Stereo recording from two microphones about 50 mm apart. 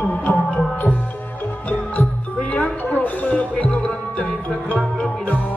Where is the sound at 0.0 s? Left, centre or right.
Left.